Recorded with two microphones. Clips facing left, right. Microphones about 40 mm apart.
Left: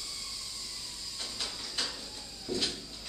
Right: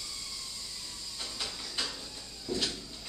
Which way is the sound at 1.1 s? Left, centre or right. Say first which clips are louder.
Even; centre.